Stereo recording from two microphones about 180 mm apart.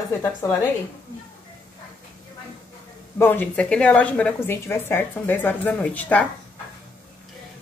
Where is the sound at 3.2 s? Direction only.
10° left (ahead or behind).